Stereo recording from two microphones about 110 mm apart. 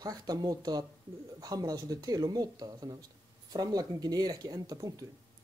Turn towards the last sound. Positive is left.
turn(degrees=-35)  # may be behind; listen again after turning